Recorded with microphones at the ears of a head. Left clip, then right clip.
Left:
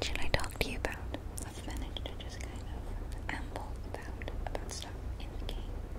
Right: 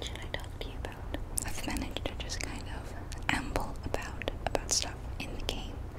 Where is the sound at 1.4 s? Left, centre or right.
Right.